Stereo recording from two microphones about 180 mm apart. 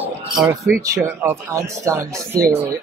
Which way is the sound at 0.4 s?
15° right (ahead or behind).